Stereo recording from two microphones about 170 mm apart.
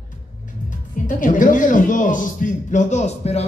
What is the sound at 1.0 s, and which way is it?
A man's voice, 50° left (ahead or behind).